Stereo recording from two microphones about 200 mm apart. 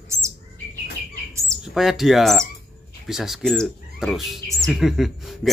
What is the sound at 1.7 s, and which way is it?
Speech, centre (ahead or behind).